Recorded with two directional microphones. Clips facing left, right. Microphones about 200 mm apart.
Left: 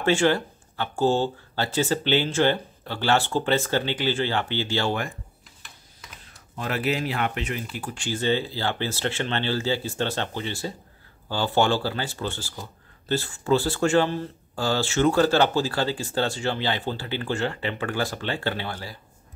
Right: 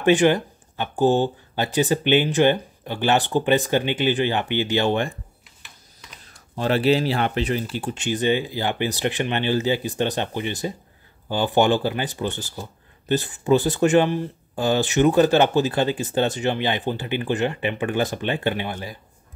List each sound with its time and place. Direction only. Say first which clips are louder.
0.0 s speech: right 4 dB; 20° right (ahead or behind)
5.6 s typing: even; 5° left (ahead or behind)
6.5 s speech: right 7 dB; 30° right (ahead or behind)